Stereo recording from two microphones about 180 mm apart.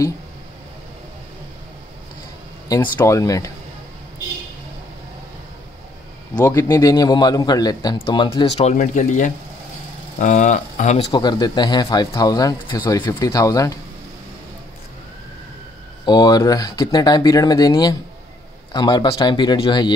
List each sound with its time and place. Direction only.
2.7 s speech: 20° left (ahead or behind)
6.3 s speech: 15° left (ahead or behind)
16.1 s speech: 20° left (ahead or behind)